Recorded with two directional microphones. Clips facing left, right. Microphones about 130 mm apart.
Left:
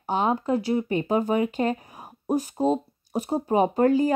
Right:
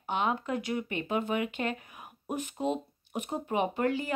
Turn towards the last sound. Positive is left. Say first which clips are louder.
# left 9 dB
turn(degrees=40)  # may be behind; listen again after turning